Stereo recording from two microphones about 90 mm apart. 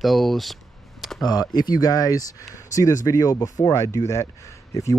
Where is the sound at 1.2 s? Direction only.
50° left (ahead or behind).